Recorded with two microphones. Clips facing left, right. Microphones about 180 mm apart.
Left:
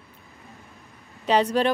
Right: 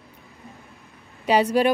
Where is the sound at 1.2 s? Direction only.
10° right (ahead or behind).